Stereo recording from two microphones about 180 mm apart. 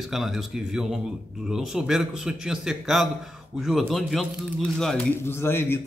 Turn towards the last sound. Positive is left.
turn(degrees=15)  # may be behind; listen again after turning